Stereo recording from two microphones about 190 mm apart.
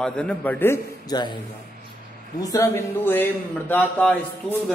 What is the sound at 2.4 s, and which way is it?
Speech, 15° left (ahead or behind).